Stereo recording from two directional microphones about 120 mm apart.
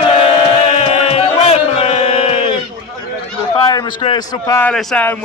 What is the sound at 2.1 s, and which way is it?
Sheep, 50° left (ahead or behind).